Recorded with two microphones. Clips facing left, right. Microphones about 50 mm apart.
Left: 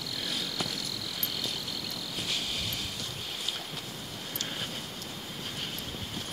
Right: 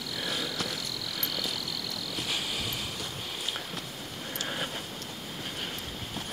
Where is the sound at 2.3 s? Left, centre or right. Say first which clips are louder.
Right 1 dB; centre.